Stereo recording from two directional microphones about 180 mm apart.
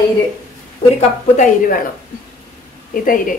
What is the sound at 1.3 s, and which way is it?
Speech, 45° left (ahead or behind).